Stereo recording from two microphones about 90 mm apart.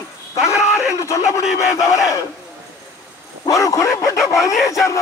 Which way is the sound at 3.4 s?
40° left (ahead or behind).